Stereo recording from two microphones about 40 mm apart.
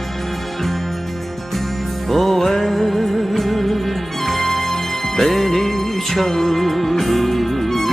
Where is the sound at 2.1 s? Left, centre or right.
Centre.